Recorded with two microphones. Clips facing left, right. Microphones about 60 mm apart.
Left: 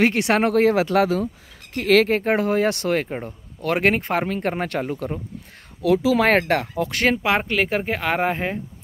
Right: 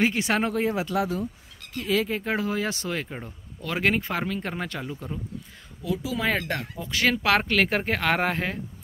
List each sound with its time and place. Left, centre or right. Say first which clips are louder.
0.0 s speech: left 5 dB; left
2.2 s speech: left 7 dB; left
4.9 s speech: left 7 dB; left
5.8 s speech: left 11 dB; left
6.9 s speech: left 2 dB; left
7.2 s speech: left 1 dB; centre